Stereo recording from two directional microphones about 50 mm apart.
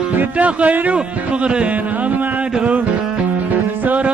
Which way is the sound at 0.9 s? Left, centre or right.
Right.